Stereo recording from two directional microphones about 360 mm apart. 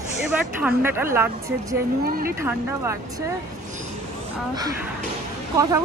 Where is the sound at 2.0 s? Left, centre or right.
Right.